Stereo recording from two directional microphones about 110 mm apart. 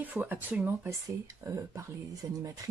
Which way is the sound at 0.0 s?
15° right (ahead or behind).